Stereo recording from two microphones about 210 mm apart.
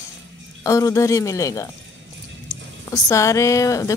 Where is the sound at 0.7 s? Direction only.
15° left (ahead or behind).